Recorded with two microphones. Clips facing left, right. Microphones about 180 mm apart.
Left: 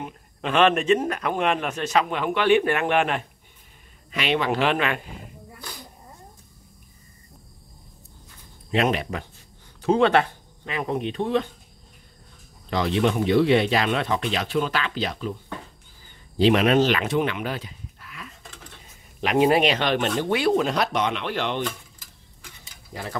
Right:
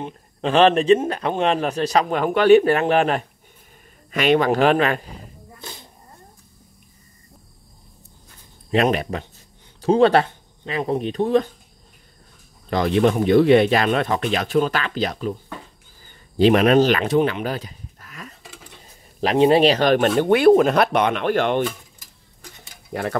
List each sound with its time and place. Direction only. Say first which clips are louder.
0.0 s a man's voice: right 5 dB; 30° right (ahead or behind)
5.6 s dog: right 2 dB; 25° right (ahead or behind)
8.7 s a man's voice: right 4 dB; 40° right (ahead or behind)
12.6 s speech: right 4 dB; 50° right (ahead or behind)
16.3 s speech: right 4 dB; 50° right (ahead or behind)
19.2 s a man's voice: right 4 dB; 25° right (ahead or behind); by 21.6 s 50° right (ahead or behind)
22.7 s a sound: right 9 dB; 60° right (ahead or behind)